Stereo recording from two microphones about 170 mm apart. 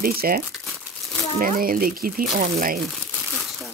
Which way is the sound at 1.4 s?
55° right (ahead or behind).